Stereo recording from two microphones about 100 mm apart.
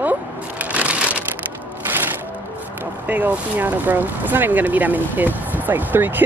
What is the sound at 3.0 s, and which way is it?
Speech, 20° right (ahead or behind).